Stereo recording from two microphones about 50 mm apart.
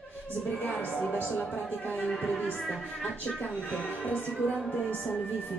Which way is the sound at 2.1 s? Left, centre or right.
Centre.